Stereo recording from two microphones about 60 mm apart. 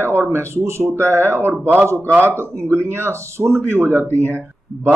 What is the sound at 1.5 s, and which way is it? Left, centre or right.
Speech, right.